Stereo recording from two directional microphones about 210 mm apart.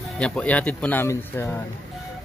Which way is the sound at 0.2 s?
5° left (ahead or behind).